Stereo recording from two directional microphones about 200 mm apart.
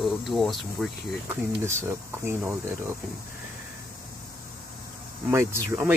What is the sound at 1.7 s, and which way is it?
Speech, 10° right (ahead or behind).